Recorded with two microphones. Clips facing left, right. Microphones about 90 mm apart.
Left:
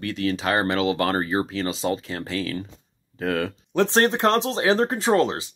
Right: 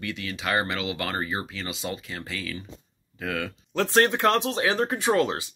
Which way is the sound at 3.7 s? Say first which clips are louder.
Left 2 dB; 25° left (ahead or behind).